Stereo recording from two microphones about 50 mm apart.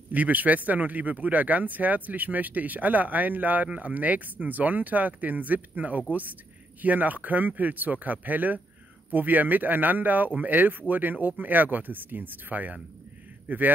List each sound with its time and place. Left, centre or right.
0.1 s speech: right